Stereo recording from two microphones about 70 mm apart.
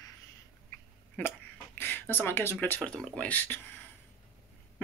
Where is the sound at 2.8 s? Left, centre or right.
Centre.